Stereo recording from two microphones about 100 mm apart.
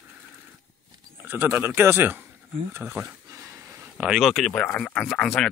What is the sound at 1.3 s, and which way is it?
Speech, 20° right (ahead or behind).